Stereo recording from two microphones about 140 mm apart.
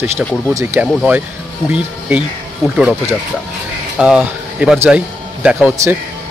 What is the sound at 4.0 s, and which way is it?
Speech, 5° right (ahead or behind).